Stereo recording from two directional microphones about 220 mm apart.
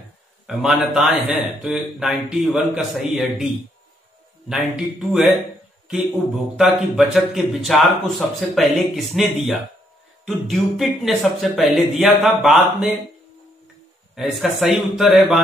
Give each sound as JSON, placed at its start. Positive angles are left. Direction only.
{"t": 0.5, "sound": "a man's voice", "side_deg": 0}
{"t": 6.5, "sound": "a man's voice", "side_deg": 0}
{"t": 14.1, "sound": "a man's voice", "side_deg": 0}